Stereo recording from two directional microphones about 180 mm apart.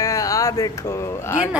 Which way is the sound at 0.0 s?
20° left (ahead or behind).